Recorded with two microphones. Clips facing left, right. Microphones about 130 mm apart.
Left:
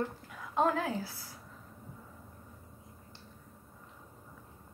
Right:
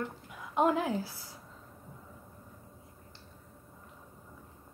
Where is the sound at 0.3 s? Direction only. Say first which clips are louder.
Right 3 dB; 15° right (ahead or behind).